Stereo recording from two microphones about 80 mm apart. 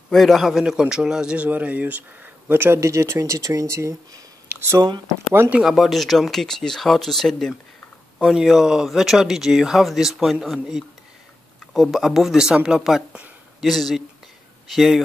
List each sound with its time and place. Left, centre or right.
0.1 s a man's voice: centre; by 5.5 s right
5.7 s speech: centre
8.2 s speech: centre